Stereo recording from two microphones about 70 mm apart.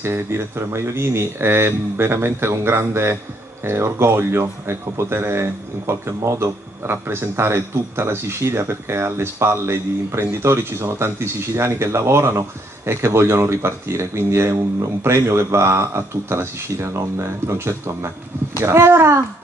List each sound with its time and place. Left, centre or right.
0.0 s a man's voice: right